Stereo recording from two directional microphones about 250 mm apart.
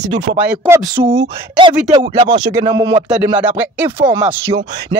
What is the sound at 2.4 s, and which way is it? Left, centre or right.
Chopping, centre.